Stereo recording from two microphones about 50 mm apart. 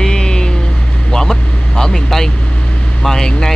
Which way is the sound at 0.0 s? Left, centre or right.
Centre.